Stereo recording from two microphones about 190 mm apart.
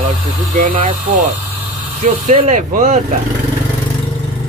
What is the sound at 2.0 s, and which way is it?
Speech, 35° right (ahead or behind).